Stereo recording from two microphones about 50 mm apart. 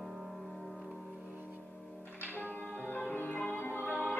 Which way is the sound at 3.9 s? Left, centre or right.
Left.